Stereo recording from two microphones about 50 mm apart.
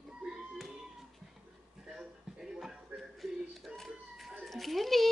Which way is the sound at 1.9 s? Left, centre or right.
Centre.